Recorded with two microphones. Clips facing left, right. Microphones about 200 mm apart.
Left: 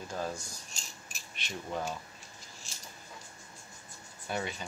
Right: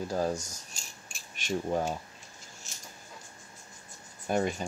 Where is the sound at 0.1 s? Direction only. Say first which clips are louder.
Right 5 dB; 40° right (ahead or behind).